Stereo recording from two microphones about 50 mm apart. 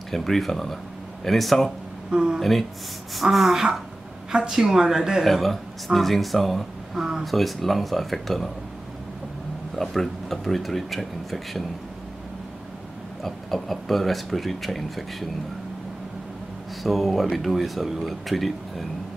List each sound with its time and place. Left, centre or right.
0.1 s speech: centre
2.0 s speech: centre
3.2 s a woman's voice: centre
5.2 s speech: centre
9.8 s speech: centre
13.2 s speech: centre
16.8 s speech: centre